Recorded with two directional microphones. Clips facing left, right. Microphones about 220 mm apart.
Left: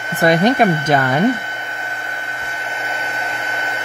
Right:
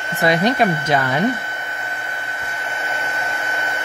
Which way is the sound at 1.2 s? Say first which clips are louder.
Left 4 dB; 25° left (ahead or behind).